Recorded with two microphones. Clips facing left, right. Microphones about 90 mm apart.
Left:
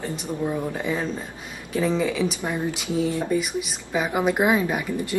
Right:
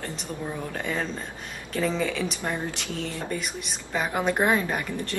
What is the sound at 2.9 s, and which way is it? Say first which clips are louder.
Speech: left 8 dB; 15° left (ahead or behind).